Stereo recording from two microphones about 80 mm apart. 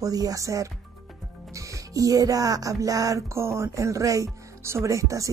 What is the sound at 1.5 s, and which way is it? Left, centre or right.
Music, right.